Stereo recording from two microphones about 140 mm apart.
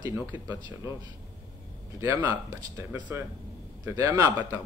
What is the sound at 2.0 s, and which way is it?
Speech, 15° right (ahead or behind).